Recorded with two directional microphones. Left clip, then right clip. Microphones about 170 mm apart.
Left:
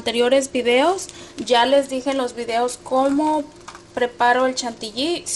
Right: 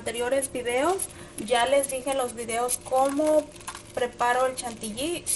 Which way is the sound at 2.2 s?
45° left (ahead or behind).